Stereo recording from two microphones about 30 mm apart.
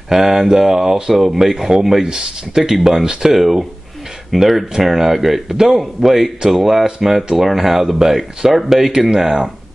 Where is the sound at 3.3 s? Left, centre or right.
Centre.